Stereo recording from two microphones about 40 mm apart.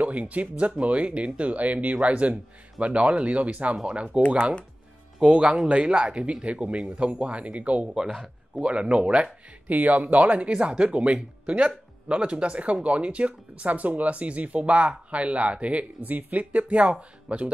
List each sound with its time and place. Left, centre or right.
0.0 s speech: right
5.2 s speech: right
7.9 s speech: centre
8.5 s speech: right
9.7 s speech: right